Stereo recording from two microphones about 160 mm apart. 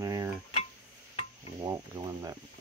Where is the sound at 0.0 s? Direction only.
20° right (ahead or behind).